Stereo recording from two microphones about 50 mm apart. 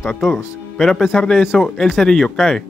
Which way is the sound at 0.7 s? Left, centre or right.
Centre.